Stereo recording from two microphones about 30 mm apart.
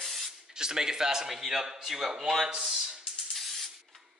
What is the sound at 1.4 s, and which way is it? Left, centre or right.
Speech, centre.